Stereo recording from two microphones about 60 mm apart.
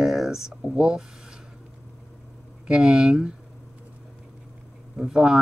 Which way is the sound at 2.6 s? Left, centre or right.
Centre.